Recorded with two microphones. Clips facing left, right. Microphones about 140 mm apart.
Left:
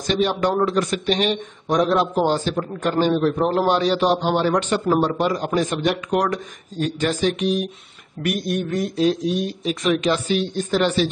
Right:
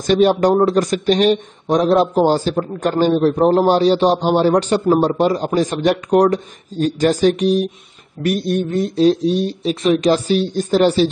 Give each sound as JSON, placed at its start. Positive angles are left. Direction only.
{"t": 0.0, "sound": "speech", "side_deg": -45}